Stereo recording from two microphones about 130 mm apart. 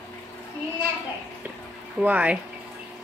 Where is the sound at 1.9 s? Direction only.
10° right (ahead or behind).